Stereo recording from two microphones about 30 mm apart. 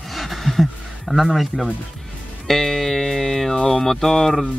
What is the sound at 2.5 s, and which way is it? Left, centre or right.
Music, centre.